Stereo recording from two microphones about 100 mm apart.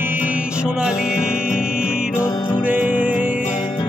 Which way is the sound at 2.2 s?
25° left (ahead or behind).